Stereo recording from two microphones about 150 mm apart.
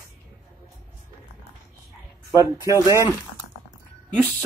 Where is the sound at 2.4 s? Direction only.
20° right (ahead or behind).